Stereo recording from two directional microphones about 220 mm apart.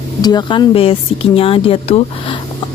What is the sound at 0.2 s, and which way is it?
Speech, 20° left (ahead or behind).